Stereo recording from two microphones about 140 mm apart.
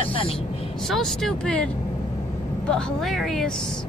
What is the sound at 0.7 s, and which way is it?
Speech, centre (ahead or behind).